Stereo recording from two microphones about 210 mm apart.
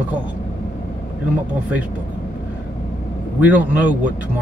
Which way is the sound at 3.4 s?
5° right (ahead or behind).